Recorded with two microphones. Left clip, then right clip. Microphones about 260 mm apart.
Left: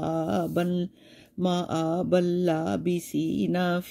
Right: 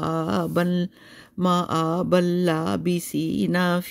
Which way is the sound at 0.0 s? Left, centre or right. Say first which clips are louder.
Right 2 dB; right.